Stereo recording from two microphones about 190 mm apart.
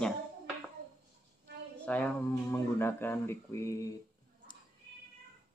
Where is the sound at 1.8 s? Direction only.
10° left (ahead or behind).